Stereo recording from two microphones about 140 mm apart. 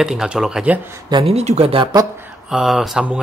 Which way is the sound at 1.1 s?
45° right (ahead or behind).